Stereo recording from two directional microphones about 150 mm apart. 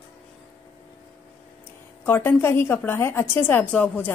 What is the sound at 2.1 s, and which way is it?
A woman's voice, 15° left (ahead or behind).